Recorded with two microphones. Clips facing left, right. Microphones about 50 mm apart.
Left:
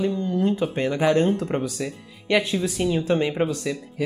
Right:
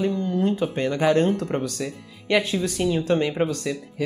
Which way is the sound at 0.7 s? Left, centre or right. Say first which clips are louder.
Right 1 dB; centre.